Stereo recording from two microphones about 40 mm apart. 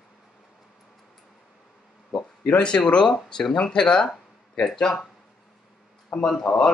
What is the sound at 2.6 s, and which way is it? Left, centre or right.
Speech, left.